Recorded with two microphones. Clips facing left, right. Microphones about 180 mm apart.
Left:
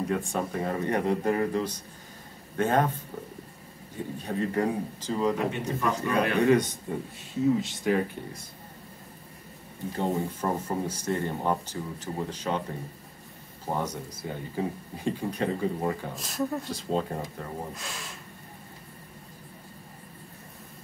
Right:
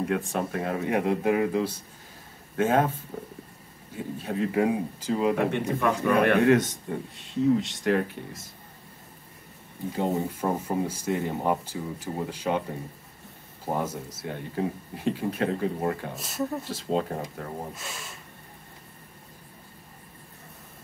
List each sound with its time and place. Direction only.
0.0 s speech: centre (ahead or behind)
4.2 s speech: 5° right (ahead or behind)
5.4 s a man's voice: 60° right (ahead or behind)
6.4 s speech: centre (ahead or behind)
9.9 s speech: 10° right (ahead or behind)
13.7 s speech: 20° right (ahead or behind)
14.1 s speech: centre (ahead or behind)